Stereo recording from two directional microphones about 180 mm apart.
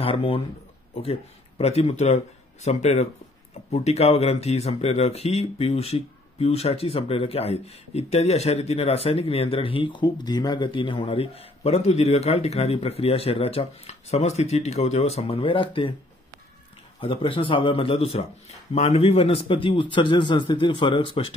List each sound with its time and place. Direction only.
0.0 s speech: 30° left (ahead or behind)
17.0 s a man's voice: 30° left (ahead or behind)